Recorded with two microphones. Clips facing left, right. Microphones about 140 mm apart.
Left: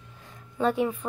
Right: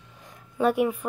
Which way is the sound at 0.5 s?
10° right (ahead or behind).